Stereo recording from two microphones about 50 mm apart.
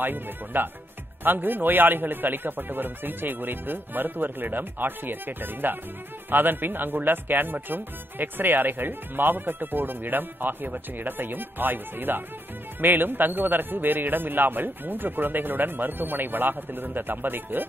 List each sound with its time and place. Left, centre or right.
0.0 s speech: right